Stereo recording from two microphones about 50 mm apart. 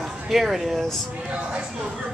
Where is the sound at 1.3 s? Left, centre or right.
Right.